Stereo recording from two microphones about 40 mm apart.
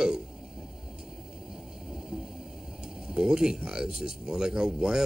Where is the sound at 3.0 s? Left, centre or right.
Centre.